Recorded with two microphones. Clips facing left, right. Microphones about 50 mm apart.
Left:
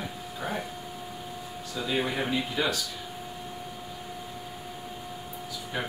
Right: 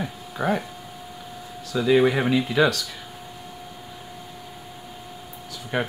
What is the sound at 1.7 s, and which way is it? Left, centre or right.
Speech, right.